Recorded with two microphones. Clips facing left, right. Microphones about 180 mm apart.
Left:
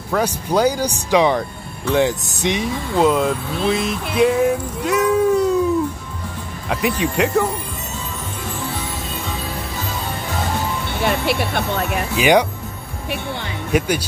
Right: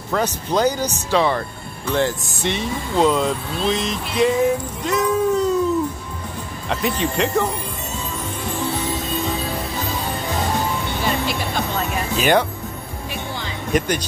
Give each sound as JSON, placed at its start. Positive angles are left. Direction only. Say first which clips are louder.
{"t": 0.1, "sound": "speech", "louder": "left 2 dB", "side_deg": 10}
{"t": 6.7, "sound": "speech", "louder": "left 2 dB", "side_deg": 10}
{"t": 11.0, "sound": "speech", "louder": "left 6 dB", "side_deg": 65}
{"t": 12.2, "sound": "speech", "louder": "left 3 dB", "side_deg": 15}
{"t": 13.1, "sound": "music", "louder": "left 4 dB", "side_deg": 65}
{"t": 13.7, "sound": "speech", "louder": "left 1 dB", "side_deg": 10}